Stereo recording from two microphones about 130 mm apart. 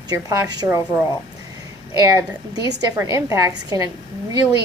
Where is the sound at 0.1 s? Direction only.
30° right (ahead or behind).